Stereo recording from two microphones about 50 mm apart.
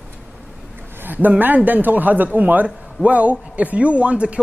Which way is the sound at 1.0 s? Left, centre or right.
Right.